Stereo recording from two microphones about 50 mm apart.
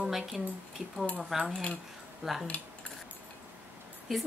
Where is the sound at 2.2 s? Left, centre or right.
Centre.